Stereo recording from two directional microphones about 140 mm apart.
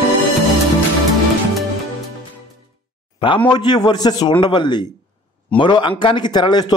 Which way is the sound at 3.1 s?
35° left (ahead or behind).